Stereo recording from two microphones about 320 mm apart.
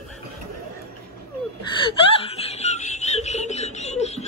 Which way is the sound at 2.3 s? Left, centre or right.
Centre.